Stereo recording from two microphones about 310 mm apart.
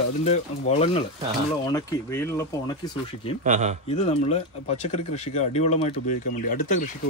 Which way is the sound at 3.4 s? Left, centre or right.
Right.